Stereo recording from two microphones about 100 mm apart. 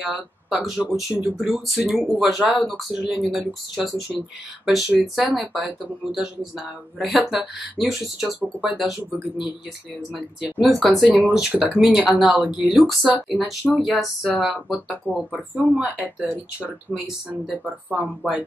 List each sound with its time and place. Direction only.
0.0 s speech: 5° right (ahead or behind)
10.1 s speech: 5° right (ahead or behind)